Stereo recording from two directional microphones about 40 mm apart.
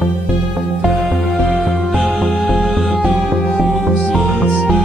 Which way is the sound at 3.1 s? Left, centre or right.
Left.